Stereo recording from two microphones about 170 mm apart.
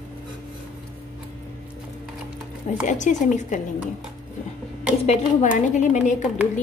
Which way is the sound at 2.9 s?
45° left (ahead or behind).